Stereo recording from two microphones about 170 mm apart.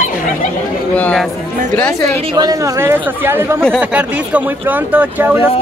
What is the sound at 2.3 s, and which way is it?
Speech, 20° right (ahead or behind).